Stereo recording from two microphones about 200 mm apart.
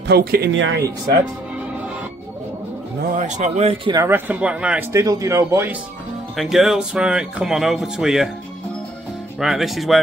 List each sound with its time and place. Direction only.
0.0 s speech: 50° right (ahead or behind)
3.2 s speech: 35° right (ahead or behind)
3.9 s speech: 10° right (ahead or behind)
6.3 s speech: centre (ahead or behind)
9.4 s speech: centre (ahead or behind)